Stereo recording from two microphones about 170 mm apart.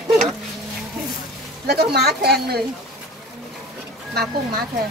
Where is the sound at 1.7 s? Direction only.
70° right (ahead or behind).